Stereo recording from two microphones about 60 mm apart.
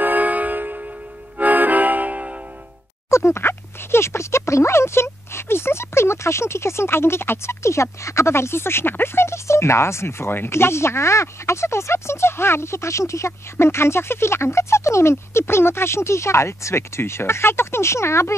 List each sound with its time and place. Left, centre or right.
0.0 s music: right
1.4 s accordion: right
3.1 s speech: left